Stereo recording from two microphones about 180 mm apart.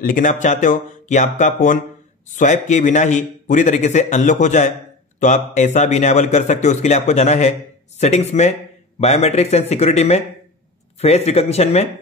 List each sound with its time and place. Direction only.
0.0 s a man's voice: 50° left (ahead or behind)